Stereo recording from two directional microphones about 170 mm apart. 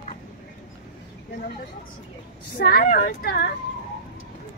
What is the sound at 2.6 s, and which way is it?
Speech, 60° left (ahead or behind).